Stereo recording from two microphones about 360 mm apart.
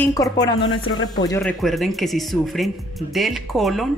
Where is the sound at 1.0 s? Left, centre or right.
Centre.